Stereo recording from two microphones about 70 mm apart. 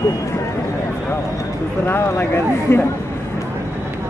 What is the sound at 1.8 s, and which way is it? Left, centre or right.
Speech, left.